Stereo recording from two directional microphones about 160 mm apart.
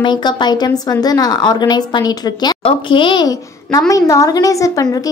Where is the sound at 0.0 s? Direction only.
30° left (ahead or behind).